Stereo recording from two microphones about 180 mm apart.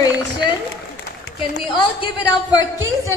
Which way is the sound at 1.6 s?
25° left (ahead or behind).